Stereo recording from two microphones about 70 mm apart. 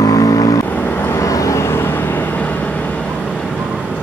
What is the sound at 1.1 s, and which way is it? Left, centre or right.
Vehicle, left.